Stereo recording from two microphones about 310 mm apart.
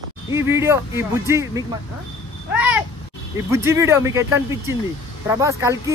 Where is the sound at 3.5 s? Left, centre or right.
Centre.